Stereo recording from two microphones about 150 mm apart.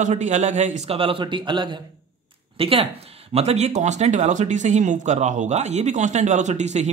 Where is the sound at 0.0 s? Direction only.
50° right (ahead or behind).